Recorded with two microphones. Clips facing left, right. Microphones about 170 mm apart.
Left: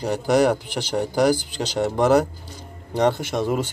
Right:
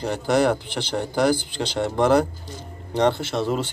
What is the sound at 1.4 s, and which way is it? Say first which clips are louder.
Speech: even; 40° left (ahead or behind).